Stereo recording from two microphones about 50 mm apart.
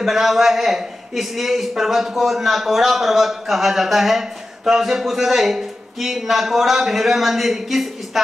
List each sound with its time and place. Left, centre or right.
0.0 s a man's voice: centre